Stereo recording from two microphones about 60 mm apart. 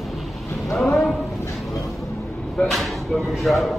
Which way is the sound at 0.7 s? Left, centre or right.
Centre.